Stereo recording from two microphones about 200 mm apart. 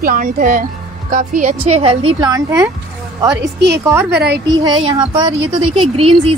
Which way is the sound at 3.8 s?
10° right (ahead or behind).